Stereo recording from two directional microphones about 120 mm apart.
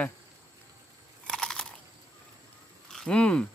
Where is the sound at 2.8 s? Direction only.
5° left (ahead or behind).